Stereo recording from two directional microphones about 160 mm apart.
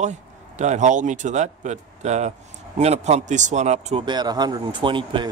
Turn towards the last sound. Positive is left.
turn(degrees=-30)  # may be behind; listen again after turning